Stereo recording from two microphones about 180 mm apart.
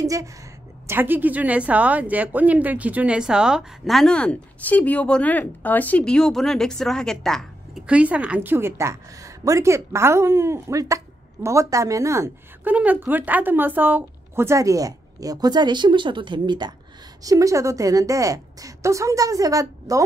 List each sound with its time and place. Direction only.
0.0 s a woman's voice: 20° right (ahead or behind)